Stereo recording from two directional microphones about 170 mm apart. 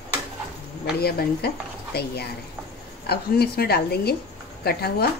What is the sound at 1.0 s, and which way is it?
Speech, 65° left (ahead or behind).